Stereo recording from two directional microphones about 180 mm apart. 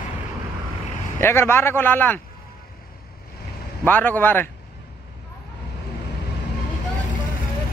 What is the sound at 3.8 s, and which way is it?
Speech, 10° left (ahead or behind).